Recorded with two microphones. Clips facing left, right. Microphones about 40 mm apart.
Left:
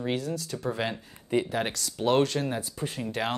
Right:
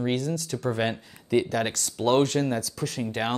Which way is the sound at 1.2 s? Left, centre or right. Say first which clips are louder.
Right 3 dB; right.